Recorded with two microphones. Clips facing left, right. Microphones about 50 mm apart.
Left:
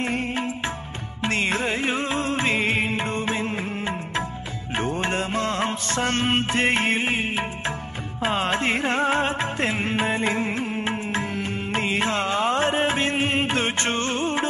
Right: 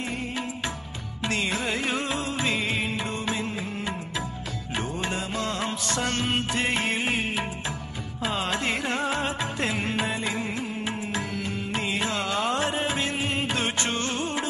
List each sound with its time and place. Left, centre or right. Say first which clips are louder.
0.0 s music: left 5 dB; left